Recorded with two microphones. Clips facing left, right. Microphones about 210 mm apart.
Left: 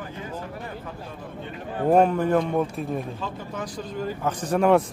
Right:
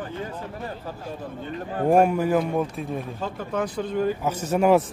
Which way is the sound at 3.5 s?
60° right (ahead or behind).